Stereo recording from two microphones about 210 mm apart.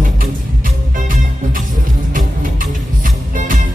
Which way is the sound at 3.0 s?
40° right (ahead or behind).